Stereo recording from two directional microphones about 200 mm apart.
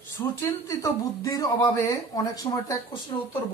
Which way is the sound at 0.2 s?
15° left (ahead or behind).